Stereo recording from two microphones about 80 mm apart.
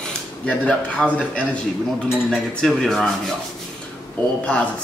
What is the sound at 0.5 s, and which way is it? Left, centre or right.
Speech, centre.